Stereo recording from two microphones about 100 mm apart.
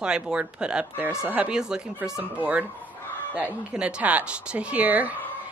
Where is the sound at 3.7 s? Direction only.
15° right (ahead or behind).